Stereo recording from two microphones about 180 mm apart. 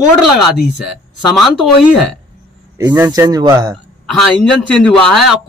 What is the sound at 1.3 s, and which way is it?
Speech, centre (ahead or behind).